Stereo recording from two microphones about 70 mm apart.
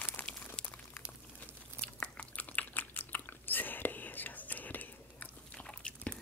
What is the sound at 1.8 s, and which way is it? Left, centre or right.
Biting, centre.